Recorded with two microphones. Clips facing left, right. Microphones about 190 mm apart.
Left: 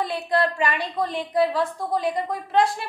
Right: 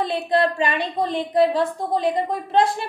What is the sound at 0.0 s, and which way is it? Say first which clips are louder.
A woman's voice: right 3 dB; 25° right (ahead or behind).